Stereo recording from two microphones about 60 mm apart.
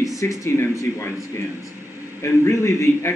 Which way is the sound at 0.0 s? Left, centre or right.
Left.